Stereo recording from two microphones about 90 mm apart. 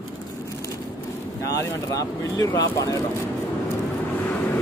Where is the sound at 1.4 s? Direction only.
40° left (ahead or behind).